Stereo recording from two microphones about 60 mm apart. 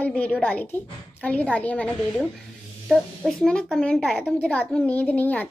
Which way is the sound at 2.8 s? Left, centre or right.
Centre.